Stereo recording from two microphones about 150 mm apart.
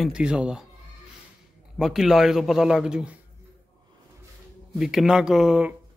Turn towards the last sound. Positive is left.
turn(degrees=-5)  # may be behind; listen again after turning